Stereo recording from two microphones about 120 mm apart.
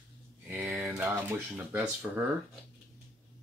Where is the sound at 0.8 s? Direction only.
20° right (ahead or behind).